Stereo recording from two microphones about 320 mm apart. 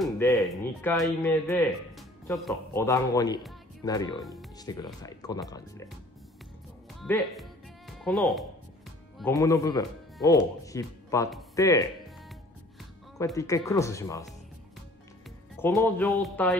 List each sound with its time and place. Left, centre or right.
0.0 s speech: centre
7.0 s music: centre
9.2 s speech: centre
13.2 s speech: centre
15.6 s speech: centre